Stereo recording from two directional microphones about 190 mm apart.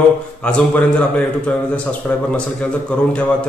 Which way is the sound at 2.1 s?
10° left (ahead or behind).